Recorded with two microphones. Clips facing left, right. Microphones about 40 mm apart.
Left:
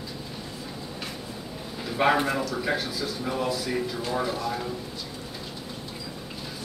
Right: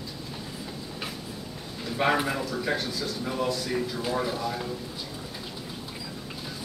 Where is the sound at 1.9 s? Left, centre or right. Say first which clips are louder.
Left 2 dB; centre.